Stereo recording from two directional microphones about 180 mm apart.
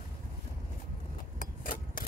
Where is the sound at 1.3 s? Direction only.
50° left (ahead or behind).